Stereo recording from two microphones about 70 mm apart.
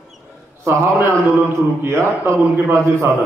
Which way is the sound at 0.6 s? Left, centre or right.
Right.